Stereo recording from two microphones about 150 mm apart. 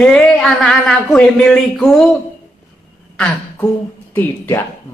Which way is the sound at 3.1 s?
10° left (ahead or behind).